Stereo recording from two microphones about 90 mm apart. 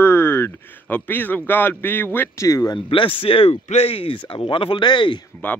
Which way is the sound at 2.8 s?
70° left (ahead or behind).